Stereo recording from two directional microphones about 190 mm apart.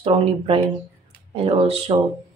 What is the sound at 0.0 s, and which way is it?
Speech, 30° right (ahead or behind).